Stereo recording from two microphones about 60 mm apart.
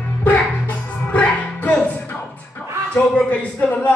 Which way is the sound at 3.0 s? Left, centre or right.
Left.